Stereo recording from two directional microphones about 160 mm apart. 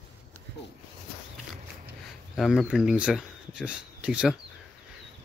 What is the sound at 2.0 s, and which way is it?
Speech, centre (ahead or behind).